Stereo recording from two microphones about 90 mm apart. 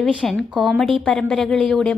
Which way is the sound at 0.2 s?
5° left (ahead or behind).